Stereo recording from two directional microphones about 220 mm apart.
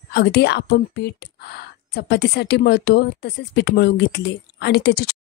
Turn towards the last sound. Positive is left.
turn(degrees=45)  # may be behind; listen again after turning